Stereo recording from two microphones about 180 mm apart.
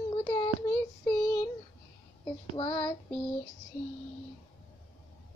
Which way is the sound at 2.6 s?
30° left (ahead or behind).